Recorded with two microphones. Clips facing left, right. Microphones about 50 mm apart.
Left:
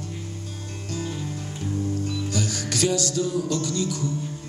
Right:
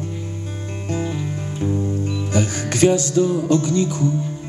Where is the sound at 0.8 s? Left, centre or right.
Right.